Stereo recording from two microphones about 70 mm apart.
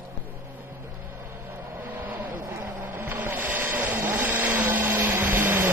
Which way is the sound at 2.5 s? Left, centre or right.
Right.